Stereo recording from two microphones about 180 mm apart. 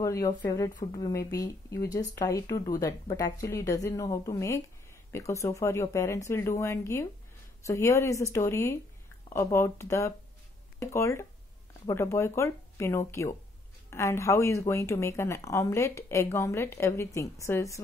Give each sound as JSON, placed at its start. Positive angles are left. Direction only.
{"t": 0.0, "sound": "speech", "side_deg": 20}